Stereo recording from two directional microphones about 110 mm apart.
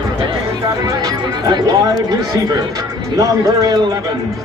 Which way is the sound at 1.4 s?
35° right (ahead or behind).